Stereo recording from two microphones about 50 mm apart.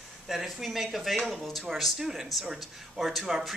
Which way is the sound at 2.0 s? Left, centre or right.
Centre.